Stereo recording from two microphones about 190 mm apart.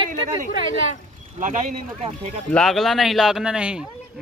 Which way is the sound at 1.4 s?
40° right (ahead or behind).